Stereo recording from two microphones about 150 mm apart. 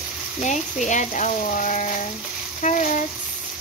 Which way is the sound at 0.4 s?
55° left (ahead or behind).